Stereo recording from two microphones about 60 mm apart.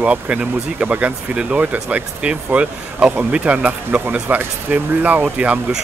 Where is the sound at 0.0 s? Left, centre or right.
Right.